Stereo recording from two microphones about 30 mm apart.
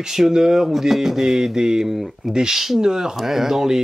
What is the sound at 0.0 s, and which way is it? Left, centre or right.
Speech, centre.